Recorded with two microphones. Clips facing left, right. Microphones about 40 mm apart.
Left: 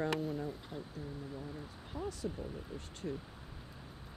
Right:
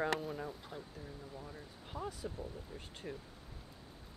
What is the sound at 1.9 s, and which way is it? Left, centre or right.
Speech, centre.